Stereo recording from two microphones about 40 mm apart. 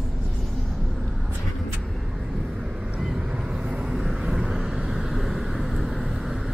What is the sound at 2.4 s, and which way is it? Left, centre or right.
Vehicle, centre.